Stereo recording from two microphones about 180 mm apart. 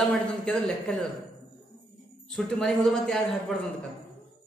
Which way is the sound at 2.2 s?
Centre (ahead or behind).